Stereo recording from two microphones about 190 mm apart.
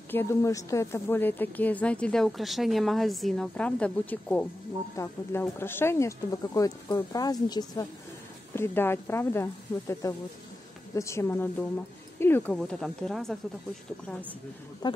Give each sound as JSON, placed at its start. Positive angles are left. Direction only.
{"t": 0.1, "sound": "a woman's voice", "side_deg": 15}
{"t": 14.8, "sound": "speech", "side_deg": 20}